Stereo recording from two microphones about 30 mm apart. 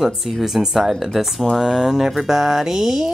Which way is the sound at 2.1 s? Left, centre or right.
Centre.